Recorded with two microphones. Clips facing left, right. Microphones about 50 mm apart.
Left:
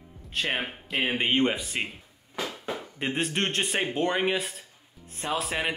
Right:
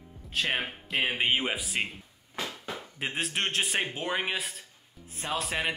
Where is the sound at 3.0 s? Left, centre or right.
Centre.